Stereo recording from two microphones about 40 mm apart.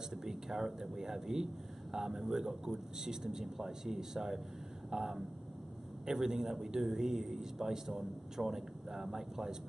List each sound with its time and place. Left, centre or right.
0.1 s a man's voice: centre